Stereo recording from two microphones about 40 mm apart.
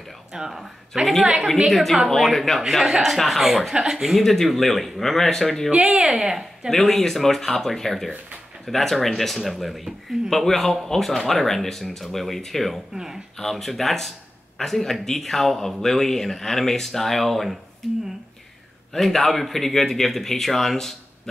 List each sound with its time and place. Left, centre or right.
0.5 s speech: centre
1.7 s speech: centre
4.2 s speech: centre
5.7 s speech: right
5.9 s speech: centre
6.7 s speech: centre
12.9 s speech: centre
13.4 s speech: centre
18.9 s speech: centre